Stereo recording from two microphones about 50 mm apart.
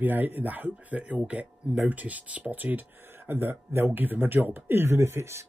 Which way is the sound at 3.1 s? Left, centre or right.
Right.